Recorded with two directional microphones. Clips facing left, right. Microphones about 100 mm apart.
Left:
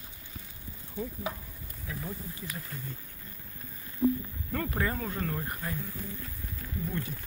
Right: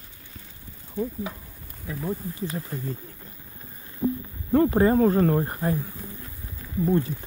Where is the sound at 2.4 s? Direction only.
30° right (ahead or behind).